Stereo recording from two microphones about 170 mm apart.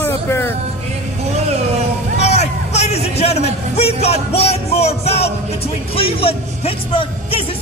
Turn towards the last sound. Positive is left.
turn(degrees=35)  # may be behind; listen again after turning